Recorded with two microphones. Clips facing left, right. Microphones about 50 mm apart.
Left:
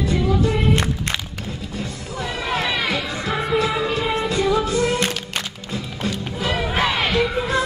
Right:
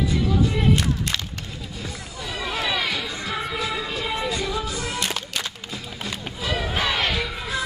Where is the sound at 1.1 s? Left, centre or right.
Left.